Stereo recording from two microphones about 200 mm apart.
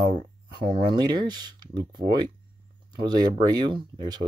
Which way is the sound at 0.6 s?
25° right (ahead or behind).